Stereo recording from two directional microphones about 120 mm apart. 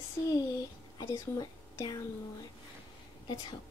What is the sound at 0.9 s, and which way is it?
Speech, 35° left (ahead or behind).